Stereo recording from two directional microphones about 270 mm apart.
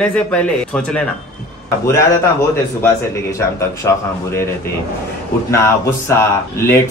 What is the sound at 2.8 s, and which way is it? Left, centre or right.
Speech, centre.